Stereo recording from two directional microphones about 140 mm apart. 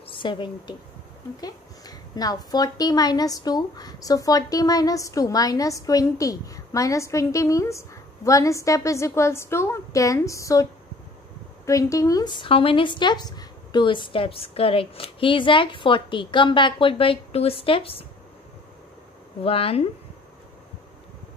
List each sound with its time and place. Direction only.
0.2 s a woman's voice: 35° left (ahead or behind)
19.4 s speech: 45° left (ahead or behind)